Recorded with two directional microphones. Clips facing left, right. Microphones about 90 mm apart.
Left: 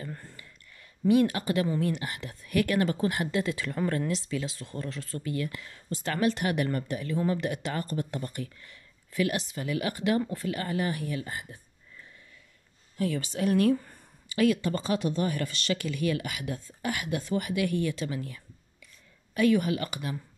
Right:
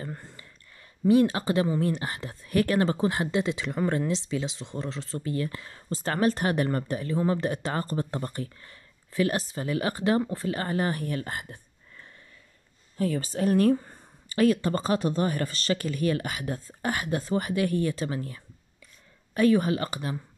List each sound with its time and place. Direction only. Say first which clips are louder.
0.1 s a sound: right 2 dB; 20° right (ahead or behind)
1.8 s speech: right 2 dB; 35° right (ahead or behind); by 12.1 s 60° right (ahead or behind)
12.9 s speech: right 2 dB; 35° right (ahead or behind)